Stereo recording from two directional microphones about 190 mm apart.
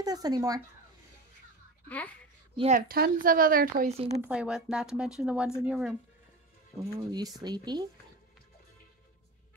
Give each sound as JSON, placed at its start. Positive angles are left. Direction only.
{"t": 0.0, "sound": "speech", "side_deg": -20}
{"t": 1.9, "sound": "speech", "side_deg": 10}
{"t": 2.5, "sound": "speech", "side_deg": -30}
{"t": 2.9, "sound": "speech", "side_deg": -50}
{"t": 3.9, "sound": "speech", "side_deg": -30}
{"t": 4.2, "sound": "speech", "side_deg": -5}
{"t": 6.8, "sound": "speech", "side_deg": -20}